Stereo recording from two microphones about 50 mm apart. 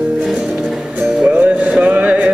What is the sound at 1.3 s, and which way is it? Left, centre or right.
Music, right.